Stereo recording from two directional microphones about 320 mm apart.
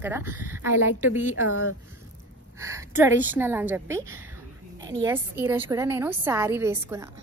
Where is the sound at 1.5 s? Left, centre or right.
Left.